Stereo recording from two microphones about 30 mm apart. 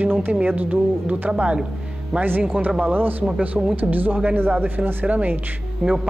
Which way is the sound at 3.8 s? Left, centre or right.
Right.